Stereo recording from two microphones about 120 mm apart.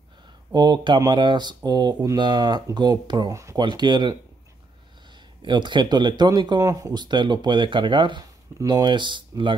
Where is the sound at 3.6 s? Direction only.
40° right (ahead or behind).